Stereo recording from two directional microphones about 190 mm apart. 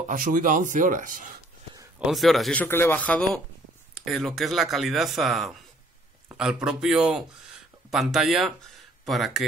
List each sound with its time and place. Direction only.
0.1 s speech: 45° right (ahead or behind)
2.0 s speech: centre (ahead or behind)